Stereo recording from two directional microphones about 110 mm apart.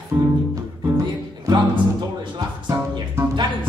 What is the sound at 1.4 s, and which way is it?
Music, 45° right (ahead or behind).